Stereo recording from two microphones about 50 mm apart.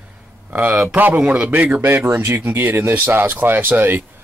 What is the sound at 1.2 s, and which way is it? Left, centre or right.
Speech, right.